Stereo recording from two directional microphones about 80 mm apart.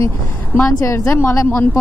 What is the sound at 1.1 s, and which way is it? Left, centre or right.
Speech, left.